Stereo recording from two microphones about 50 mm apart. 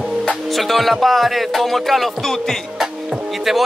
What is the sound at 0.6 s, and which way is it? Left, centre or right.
Speech, centre.